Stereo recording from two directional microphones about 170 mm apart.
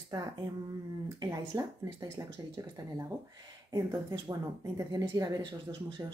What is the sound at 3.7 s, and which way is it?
Speech, 20° right (ahead or behind).